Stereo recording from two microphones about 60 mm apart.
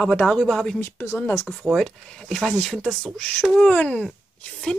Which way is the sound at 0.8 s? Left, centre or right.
Left.